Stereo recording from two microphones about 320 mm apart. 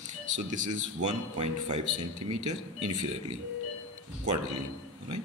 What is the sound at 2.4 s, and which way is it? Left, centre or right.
Speech, right.